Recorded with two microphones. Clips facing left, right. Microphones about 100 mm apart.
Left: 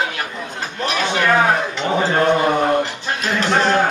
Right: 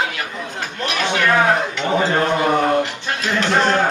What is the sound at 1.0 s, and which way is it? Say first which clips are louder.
Speech: even; 10° left (ahead or behind).